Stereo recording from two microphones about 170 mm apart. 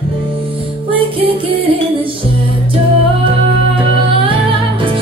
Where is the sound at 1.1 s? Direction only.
30° right (ahead or behind).